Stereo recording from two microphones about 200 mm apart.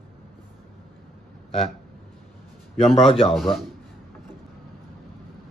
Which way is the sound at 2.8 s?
25° left (ahead or behind).